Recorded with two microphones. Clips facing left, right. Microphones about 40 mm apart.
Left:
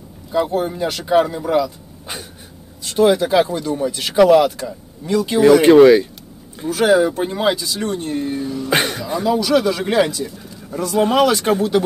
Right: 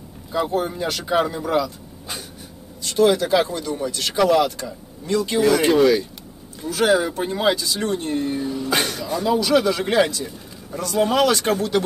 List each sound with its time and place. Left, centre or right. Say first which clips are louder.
0.3 s speech: left 3 dB; centre
2.8 s speech: left 3 dB; centre
5.4 s speech: left 8 dB; left
6.7 s speech: left 4 dB; centre
8.6 s speech: left 5 dB; left
9.2 s speech: left 2 dB; centre